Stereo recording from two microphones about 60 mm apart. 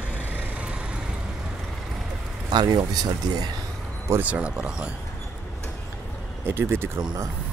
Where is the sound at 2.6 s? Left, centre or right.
Right.